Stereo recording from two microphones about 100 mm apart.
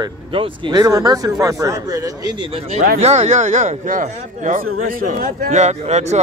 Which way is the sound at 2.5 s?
90° right.